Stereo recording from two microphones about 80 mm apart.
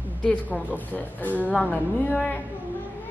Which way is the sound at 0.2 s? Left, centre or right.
Centre.